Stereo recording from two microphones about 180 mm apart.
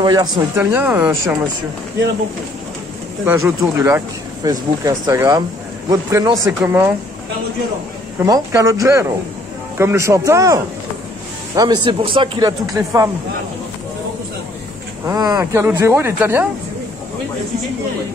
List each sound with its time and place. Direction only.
0.0 s speech: 25° right (ahead or behind)
3.3 s speech: 10° right (ahead or behind)
8.2 s speech: 15° right (ahead or behind)
15.0 s speech: 20° right (ahead or behind)